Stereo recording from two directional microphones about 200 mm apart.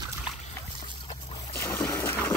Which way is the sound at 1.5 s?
10° left (ahead or behind).